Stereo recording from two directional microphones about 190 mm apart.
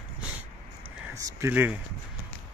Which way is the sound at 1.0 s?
15° right (ahead or behind).